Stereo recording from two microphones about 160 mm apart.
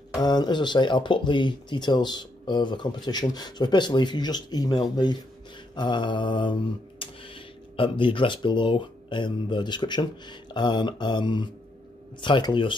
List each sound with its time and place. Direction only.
0.1 s speech: 25° left (ahead or behind)